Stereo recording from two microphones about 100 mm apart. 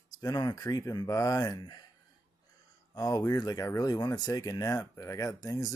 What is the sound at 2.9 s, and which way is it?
Speech, 40° left (ahead or behind).